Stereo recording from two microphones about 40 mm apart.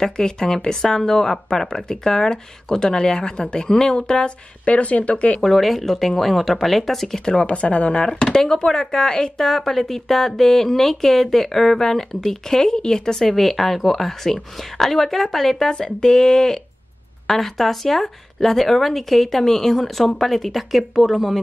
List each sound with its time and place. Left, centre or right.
0.0 s speech: centre
4.6 s speech: left
5.4 s speech: centre
7.2 s speech: left
8.0 s speech: left; by 15.7 s centre
15.7 s speech: centre